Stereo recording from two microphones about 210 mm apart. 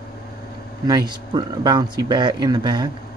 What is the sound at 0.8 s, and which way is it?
Speech, 20° right (ahead or behind).